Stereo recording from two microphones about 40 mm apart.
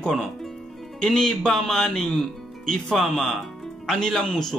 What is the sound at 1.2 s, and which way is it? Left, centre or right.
Speech, centre.